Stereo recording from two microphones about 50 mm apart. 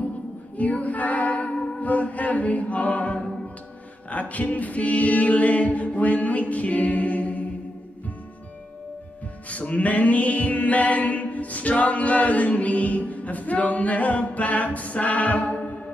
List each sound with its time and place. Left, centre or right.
0.6 s female singing: left
4.1 s music: left
9.5 s music: left